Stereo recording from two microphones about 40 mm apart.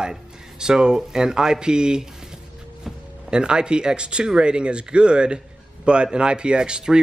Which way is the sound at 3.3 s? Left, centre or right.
Right.